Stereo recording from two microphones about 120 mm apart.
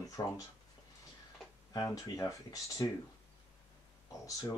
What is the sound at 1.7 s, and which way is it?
Speech, 30° left (ahead or behind).